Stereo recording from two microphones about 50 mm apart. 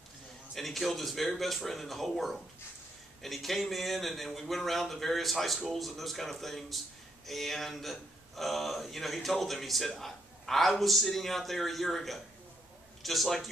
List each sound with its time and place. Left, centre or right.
0.6 s speech: centre